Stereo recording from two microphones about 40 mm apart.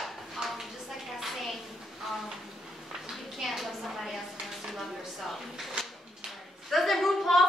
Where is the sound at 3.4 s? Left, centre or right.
Centre.